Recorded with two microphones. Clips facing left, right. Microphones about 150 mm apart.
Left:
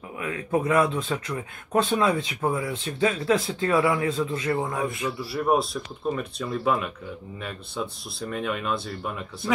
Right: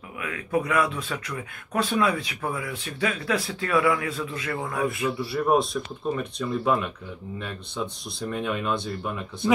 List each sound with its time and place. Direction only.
0.2 s speech: 25° left (ahead or behind)
5.2 s speech: centre (ahead or behind)